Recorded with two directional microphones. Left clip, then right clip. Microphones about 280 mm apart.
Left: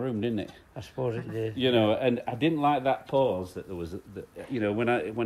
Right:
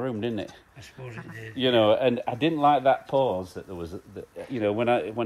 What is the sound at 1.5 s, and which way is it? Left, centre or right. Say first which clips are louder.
Speech: right 4 dB; right.